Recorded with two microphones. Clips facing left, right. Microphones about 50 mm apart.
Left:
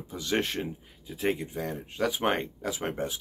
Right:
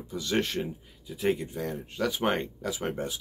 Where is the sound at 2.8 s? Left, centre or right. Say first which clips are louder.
Left 1 dB; centre.